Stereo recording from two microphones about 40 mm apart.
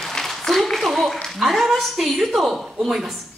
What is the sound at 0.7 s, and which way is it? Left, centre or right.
A woman's voice, centre.